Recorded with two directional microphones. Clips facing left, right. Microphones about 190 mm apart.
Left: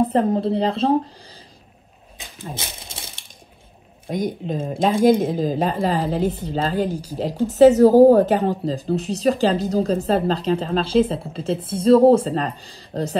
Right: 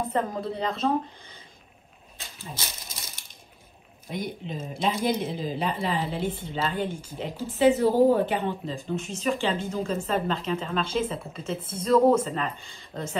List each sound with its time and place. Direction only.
0.0 s a woman's voice: 30° left (ahead or behind)
2.8 s crushing: 30° left (ahead or behind)
4.1 s a woman's voice: 45° left (ahead or behind)